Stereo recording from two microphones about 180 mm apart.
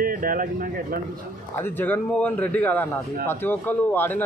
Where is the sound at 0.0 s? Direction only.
50° right (ahead or behind).